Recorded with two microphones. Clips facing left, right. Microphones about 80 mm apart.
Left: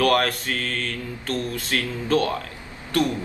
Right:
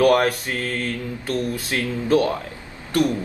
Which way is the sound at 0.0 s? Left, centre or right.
Centre.